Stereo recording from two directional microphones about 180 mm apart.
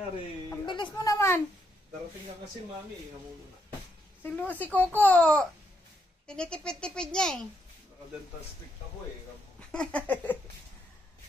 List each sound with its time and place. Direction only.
0.7 s a sound: 25° left (ahead or behind)
4.2 s speech: 10° left (ahead or behind)
9.6 s speech: 5° left (ahead or behind)